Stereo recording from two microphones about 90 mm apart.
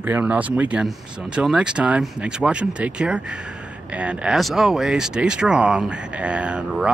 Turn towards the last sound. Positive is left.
turn(degrees=-10)  # may be behind; listen again after turning